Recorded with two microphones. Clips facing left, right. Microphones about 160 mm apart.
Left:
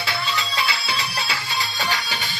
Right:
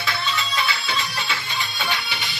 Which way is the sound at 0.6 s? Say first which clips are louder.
Even; 30° left (ahead or behind).